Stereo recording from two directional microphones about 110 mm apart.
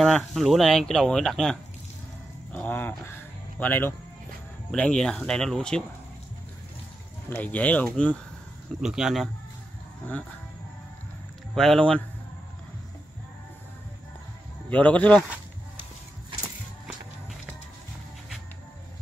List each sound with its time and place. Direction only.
0.0 s speech: centre (ahead or behind)
2.5 s a sound: 15° left (ahead or behind)
3.1 s music: 15° left (ahead or behind)
4.6 s speech: 5° left (ahead or behind)
7.2 s speech: 15° left (ahead or behind)
8.8 s speech: 5° right (ahead or behind)
11.5 s speech: 5° left (ahead or behind)
14.7 s speech: 15° left (ahead or behind)